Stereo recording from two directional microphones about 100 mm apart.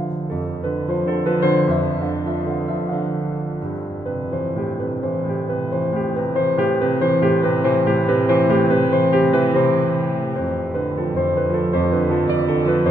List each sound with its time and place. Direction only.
8.1 s music: 15° right (ahead or behind)
12.1 s music: 20° left (ahead or behind)